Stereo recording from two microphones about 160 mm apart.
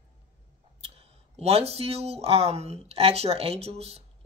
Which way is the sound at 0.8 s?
40° right (ahead or behind).